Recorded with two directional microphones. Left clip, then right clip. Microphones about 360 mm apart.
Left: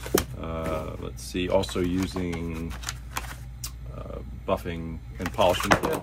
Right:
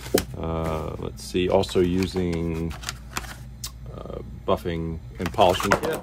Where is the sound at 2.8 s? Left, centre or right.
Centre.